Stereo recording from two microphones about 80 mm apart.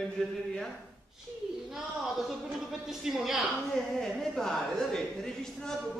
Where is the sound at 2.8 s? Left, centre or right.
Centre.